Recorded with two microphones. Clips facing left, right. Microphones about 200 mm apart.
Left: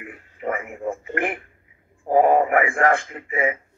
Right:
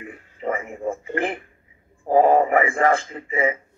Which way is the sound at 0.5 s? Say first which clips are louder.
Right 1 dB; 25° right (ahead or behind).